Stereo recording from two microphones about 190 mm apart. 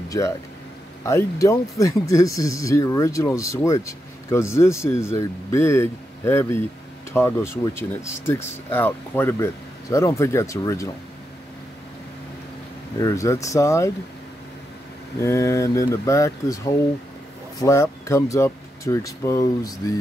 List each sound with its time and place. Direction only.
1.0 s speech: 15° left (ahead or behind)
13.0 s speech: 15° left (ahead or behind)
15.2 s speech: 15° left (ahead or behind)